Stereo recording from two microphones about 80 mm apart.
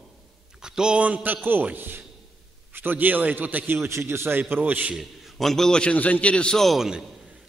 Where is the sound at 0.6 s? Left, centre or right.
Centre.